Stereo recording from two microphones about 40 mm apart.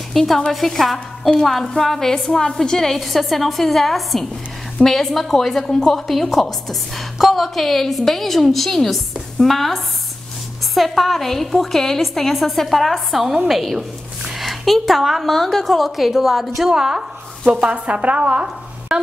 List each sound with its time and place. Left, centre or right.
0.1 s a woman's voice: centre
16.7 s speech: centre
17.5 s a woman's voice: right
18.9 s a sound: centre